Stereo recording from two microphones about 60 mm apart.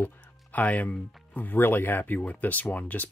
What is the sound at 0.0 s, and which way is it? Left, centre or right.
Speech, left.